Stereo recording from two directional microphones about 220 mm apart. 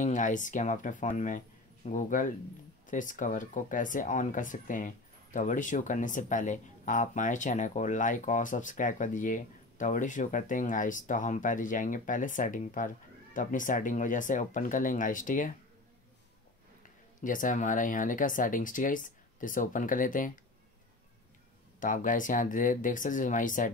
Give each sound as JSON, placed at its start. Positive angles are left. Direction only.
{"t": 0.0, "sound": "speech", "side_deg": 35}
{"t": 17.2, "sound": "speech", "side_deg": 35}
{"t": 21.7, "sound": "speech", "side_deg": 35}